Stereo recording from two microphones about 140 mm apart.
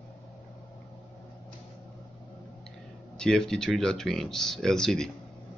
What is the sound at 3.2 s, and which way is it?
Speech, 5° left (ahead or behind).